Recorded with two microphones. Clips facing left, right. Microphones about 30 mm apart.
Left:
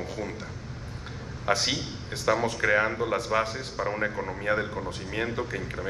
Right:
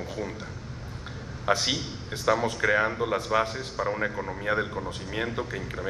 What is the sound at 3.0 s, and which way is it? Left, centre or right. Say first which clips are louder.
Speech: even; right.